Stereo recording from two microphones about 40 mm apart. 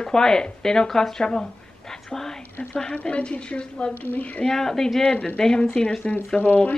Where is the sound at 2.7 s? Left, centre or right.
Left.